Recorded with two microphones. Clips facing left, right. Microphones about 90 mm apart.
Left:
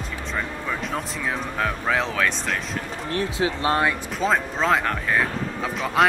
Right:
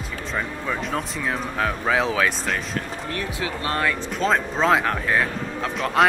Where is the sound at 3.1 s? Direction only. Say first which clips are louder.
Left 6 dB; 25° left (ahead or behind).